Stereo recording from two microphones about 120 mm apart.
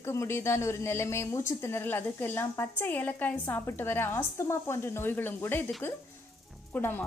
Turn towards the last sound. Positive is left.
turn(degrees=15)  # may be behind; listen again after turning